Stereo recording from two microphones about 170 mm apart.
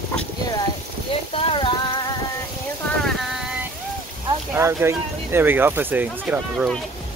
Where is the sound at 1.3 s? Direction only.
30° left (ahead or behind).